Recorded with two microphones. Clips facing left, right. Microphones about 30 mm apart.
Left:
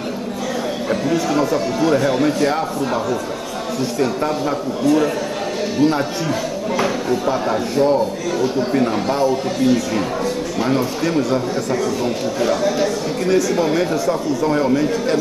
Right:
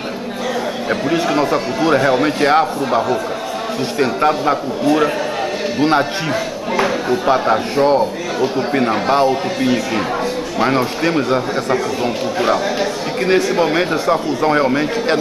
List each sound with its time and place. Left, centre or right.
0.8 s a man's voice: right
6.3 s a sound: right
7.2 s a man's voice: right
8.4 s a man's voice: right